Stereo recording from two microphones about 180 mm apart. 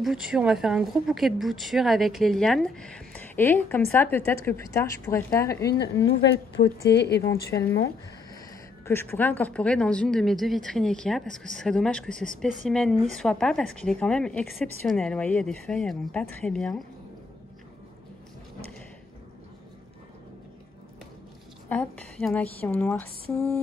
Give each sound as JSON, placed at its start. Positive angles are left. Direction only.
{"t": 0.0, "sound": "a woman's voice", "side_deg": -5}
{"t": 5.6, "sound": "a woman's voice", "side_deg": 65}
{"t": 8.8, "sound": "a woman's voice", "side_deg": 15}
{"t": 21.6, "sound": "a woman's voice", "side_deg": 10}